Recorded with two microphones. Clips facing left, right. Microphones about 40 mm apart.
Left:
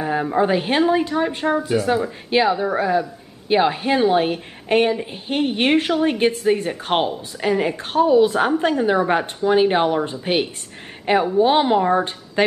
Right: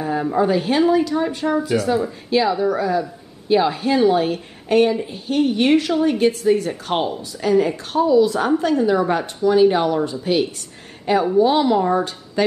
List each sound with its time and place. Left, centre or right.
0.4 s a woman's voice: left